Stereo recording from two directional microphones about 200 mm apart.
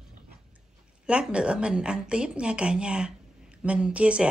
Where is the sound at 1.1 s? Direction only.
5° right (ahead or behind).